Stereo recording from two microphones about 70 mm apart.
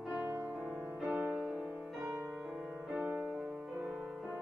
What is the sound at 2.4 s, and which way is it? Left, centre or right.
Music, centre.